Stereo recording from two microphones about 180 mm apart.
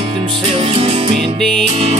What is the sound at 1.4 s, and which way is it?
Music, 5° left (ahead or behind).